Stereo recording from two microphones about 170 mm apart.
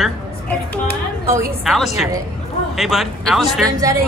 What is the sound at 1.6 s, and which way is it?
Speech, centre (ahead or behind).